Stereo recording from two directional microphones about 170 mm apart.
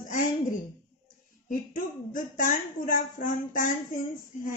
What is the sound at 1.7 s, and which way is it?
Speech, 50° left (ahead or behind).